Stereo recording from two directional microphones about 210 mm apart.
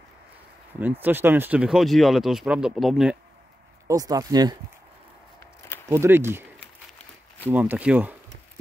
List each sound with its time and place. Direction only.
0.7 s speech: 10° right (ahead or behind)
3.8 s speech: 15° right (ahead or behind)
5.9 s speech: 10° right (ahead or behind)
7.5 s speech: 5° right (ahead or behind)